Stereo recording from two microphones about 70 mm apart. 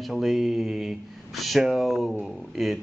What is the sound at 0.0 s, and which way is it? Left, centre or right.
Speech, centre.